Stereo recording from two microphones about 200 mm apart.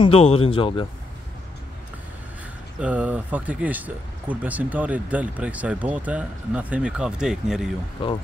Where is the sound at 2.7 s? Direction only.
5° right (ahead or behind).